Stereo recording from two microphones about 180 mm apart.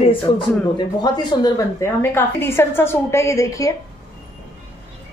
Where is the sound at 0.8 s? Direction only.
25° left (ahead or behind).